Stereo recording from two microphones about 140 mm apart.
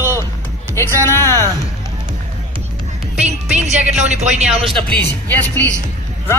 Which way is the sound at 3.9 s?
55° right (ahead or behind).